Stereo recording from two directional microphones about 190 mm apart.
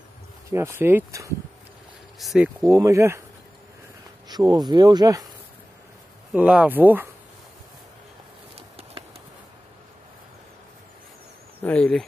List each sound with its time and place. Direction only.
0.5 s speech: 10° right (ahead or behind)
2.1 s speech: centre (ahead or behind)
2.6 s speech: 15° right (ahead or behind)
4.3 s speech: 20° right (ahead or behind)
6.3 s speech: 5° right (ahead or behind)
8.5 s a sound: 30° right (ahead or behind)
11.6 s speech: 5° left (ahead or behind)